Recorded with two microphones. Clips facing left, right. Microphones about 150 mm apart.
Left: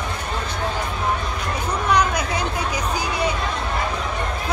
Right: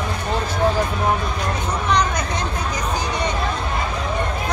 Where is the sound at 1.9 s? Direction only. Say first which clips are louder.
Left 1 dB; 5° left (ahead or behind).